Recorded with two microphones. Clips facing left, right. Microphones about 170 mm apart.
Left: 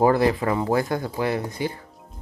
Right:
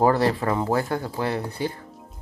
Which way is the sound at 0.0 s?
15° left (ahead or behind).